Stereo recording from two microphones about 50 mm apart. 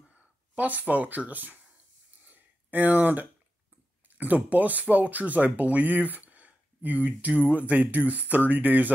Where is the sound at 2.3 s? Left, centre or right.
Right.